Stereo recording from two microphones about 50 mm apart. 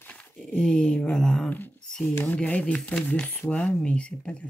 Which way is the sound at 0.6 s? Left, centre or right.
Left.